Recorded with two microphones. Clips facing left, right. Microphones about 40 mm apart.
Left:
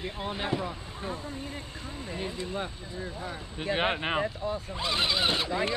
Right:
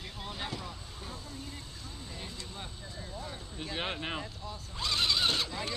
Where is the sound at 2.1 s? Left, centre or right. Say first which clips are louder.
Left 12 dB; left.